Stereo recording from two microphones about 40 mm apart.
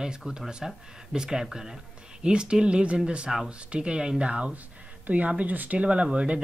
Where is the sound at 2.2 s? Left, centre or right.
Right.